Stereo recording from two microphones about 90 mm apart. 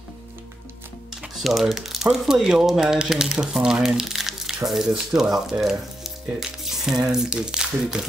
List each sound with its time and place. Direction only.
1.2 s speech: centre (ahead or behind)